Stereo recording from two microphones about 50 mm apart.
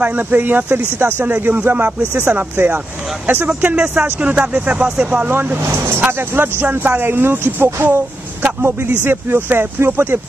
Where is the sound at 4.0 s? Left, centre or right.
Right.